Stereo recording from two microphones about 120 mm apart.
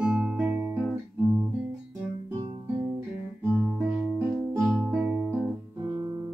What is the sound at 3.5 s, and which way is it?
Guitar, 20° right (ahead or behind).